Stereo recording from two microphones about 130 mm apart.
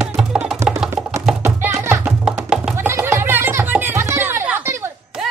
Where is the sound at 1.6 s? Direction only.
20° right (ahead or behind).